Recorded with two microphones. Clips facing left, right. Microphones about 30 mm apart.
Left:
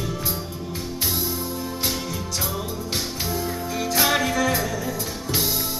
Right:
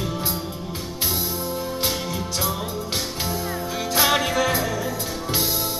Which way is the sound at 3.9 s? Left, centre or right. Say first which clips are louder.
Right 1 dB; right.